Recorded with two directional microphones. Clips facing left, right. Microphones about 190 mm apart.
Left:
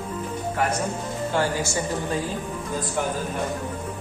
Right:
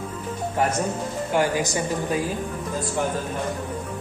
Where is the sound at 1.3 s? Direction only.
15° right (ahead or behind).